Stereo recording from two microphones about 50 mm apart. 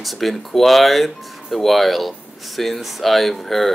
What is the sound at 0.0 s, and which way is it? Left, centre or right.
Speech, centre.